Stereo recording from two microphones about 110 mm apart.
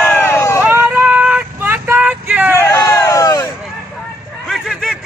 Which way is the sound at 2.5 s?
25° left (ahead or behind).